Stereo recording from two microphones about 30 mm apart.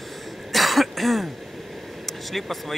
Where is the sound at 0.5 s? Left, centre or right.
Centre.